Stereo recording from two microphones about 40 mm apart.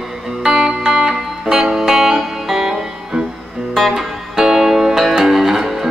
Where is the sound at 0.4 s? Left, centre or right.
Centre.